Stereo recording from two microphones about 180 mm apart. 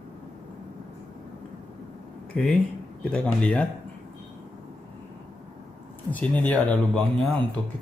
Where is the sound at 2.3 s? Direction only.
5° left (ahead or behind).